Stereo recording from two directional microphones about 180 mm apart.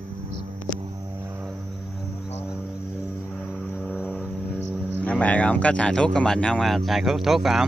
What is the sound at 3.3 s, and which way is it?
Vehicle, centre (ahead or behind).